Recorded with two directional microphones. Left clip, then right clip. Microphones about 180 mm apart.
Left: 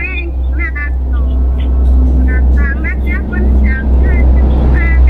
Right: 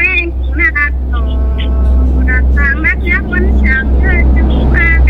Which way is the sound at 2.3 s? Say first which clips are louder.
Right 7 dB; 20° right (ahead or behind).